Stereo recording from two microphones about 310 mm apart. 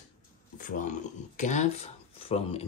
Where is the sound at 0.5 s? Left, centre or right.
Left.